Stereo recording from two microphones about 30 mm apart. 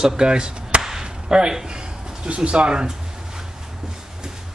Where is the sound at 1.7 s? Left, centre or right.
Right.